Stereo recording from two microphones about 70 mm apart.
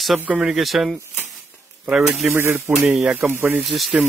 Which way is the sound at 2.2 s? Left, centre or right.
Centre.